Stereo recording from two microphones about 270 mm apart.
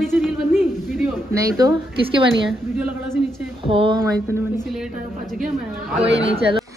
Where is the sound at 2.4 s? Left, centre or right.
Centre.